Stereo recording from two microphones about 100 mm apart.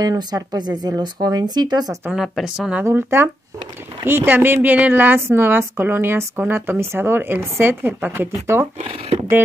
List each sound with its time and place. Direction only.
0.0 s speech: 40° right (ahead or behind)
2.1 s speech: centre (ahead or behind)
2.8 s a woman's voice: 25° right (ahead or behind)